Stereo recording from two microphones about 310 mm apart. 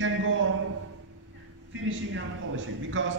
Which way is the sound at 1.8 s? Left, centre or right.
Right.